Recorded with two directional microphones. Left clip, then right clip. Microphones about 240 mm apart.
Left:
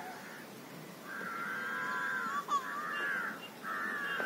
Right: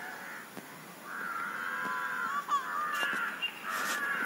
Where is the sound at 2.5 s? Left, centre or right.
Left.